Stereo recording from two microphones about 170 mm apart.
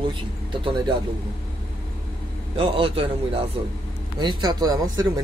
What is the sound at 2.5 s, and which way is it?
Speech, 30° right (ahead or behind).